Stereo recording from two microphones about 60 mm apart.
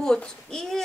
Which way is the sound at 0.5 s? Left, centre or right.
Centre.